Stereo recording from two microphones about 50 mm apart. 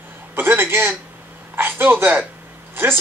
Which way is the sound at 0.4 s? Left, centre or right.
Right.